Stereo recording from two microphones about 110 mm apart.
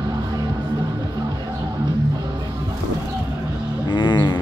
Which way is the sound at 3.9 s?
40° left (ahead or behind).